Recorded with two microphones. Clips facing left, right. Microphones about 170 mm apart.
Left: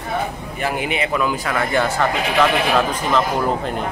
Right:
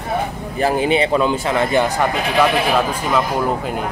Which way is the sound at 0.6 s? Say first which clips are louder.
Right 6 dB; 30° right (ahead or behind).